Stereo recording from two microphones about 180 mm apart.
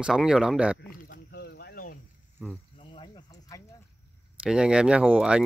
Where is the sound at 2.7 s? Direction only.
25° left (ahead or behind).